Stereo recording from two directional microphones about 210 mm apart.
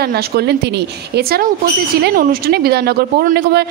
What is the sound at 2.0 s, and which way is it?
A woman's voice, 50° right (ahead or behind).